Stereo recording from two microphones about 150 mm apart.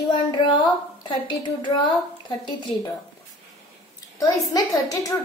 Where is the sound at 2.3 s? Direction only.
30° left (ahead or behind).